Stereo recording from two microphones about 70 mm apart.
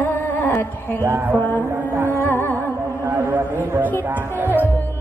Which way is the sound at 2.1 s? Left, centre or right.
Left.